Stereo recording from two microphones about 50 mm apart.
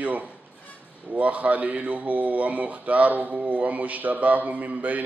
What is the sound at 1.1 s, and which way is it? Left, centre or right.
Mantra, right.